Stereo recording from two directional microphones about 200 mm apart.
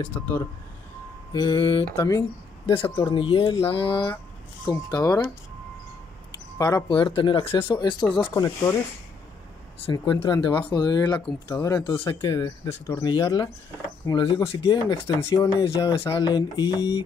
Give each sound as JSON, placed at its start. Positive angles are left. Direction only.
{"t": 0.2, "sound": "speech", "side_deg": 15}
{"t": 2.6, "sound": "speech", "side_deg": 25}
{"t": 6.6, "sound": "speech", "side_deg": 20}
{"t": 10.2, "sound": "speech", "side_deg": 25}